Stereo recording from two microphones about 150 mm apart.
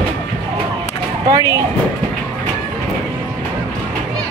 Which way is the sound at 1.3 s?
25° right (ahead or behind).